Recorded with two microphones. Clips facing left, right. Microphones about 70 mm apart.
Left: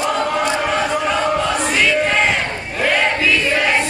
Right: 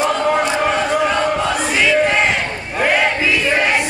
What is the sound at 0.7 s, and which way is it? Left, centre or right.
Chant, centre.